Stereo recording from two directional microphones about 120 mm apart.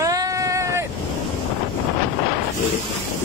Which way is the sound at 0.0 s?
30° right (ahead or behind).